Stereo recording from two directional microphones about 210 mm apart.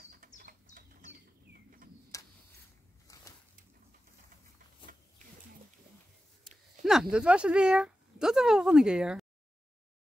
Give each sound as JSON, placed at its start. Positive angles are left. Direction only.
{"t": 0.4, "sound": "bird", "side_deg": -40}
{"t": 2.1, "sound": "a sound", "side_deg": 15}
{"t": 6.8, "sound": "speech", "side_deg": 0}